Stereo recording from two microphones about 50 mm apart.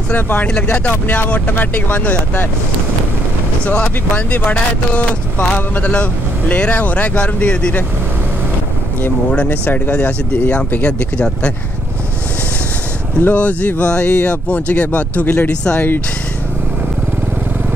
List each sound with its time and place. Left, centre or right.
0.1 s speech: left
0.6 s speech: left
1.0 s speech: left
3.6 s speech: left
9.5 s speech: left
10.8 s speech: left
13.2 s speech: left